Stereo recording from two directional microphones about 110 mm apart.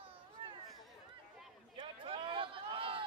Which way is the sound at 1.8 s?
50° right (ahead or behind).